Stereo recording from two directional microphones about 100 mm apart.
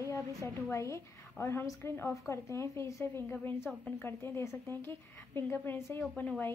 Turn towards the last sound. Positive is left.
turn(degrees=15)  # may be behind; listen again after turning